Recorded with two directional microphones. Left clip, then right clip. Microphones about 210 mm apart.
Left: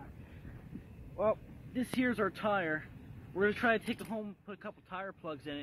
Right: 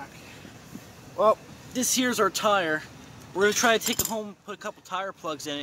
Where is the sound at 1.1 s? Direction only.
20° right (ahead or behind).